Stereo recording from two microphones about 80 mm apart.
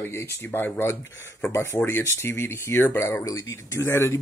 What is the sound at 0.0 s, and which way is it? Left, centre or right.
Speech, left.